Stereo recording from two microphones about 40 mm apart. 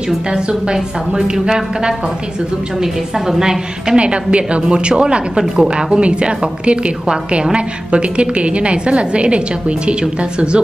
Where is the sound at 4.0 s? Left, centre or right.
Right.